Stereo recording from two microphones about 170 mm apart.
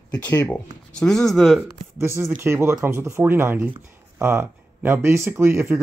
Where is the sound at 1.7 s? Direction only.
15° right (ahead or behind).